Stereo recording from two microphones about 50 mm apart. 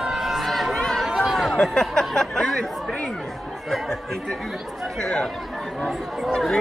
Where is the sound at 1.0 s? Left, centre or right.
Centre.